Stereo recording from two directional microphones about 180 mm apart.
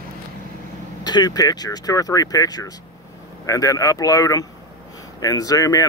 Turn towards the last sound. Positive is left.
turn(degrees=20)  # may be behind; listen again after turning